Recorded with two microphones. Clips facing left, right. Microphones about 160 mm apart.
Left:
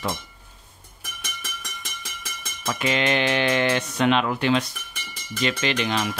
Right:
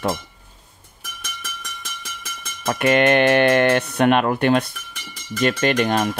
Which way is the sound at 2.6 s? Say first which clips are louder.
Right 7 dB; 55° right (ahead or behind).